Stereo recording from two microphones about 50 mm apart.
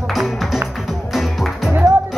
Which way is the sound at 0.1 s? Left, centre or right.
Centre.